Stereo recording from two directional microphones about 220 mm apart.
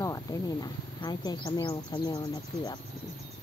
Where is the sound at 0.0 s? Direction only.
15° left (ahead or behind).